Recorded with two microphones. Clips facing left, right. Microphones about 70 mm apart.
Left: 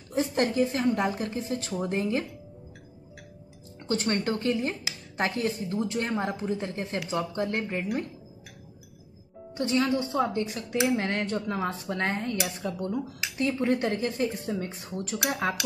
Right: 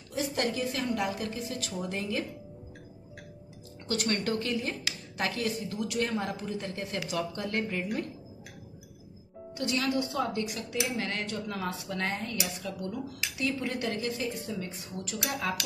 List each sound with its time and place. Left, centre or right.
0.1 s speech: left
3.8 s speech: left
9.5 s speech: left